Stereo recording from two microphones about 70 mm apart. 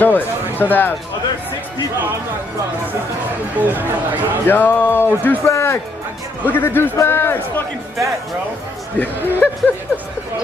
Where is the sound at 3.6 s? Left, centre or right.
Right.